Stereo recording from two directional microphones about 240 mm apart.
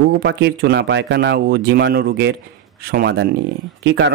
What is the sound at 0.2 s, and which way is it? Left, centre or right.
Speech, right.